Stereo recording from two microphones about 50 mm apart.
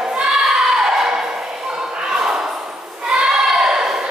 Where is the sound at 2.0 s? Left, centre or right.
Centre.